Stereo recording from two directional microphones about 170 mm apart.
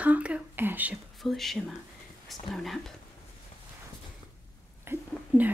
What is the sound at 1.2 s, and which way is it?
Speech, centre (ahead or behind).